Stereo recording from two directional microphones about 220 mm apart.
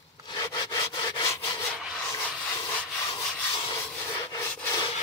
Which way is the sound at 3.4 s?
15° left (ahead or behind).